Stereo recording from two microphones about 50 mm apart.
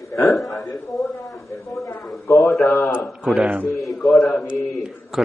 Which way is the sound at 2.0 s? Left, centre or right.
Centre.